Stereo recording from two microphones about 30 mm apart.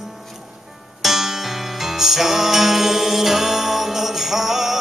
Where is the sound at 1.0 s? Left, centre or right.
Centre.